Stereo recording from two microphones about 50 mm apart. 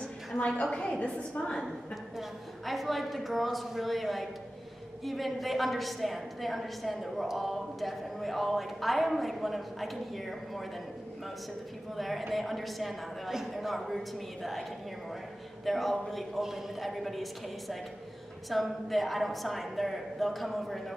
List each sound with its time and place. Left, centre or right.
0.6 s a woman's voice: centre
2.1 s a woman's voice: centre
12.0 s a woman's voice: centre
15.6 s a woman's voice: centre